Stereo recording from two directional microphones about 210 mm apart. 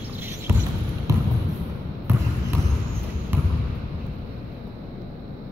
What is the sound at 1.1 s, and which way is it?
Basketball bounce, 15° right (ahead or behind).